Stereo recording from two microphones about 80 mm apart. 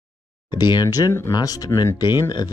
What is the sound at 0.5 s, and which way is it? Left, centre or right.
Speech, left.